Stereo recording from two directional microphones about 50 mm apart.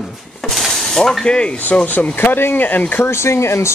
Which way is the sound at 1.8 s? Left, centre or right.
Left.